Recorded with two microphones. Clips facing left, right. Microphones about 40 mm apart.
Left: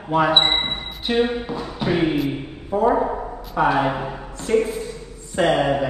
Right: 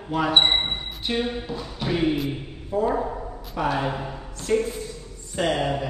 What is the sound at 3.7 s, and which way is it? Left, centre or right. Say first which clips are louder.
A man's voice: left 6 dB; left.